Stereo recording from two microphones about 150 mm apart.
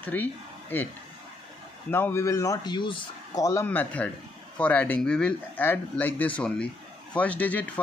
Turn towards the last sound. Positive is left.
turn(degrees=10)  # may be behind; listen again after turning